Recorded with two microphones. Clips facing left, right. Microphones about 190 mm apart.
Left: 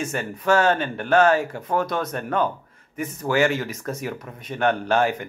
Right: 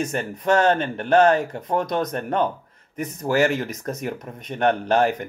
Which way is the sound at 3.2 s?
40° right (ahead or behind).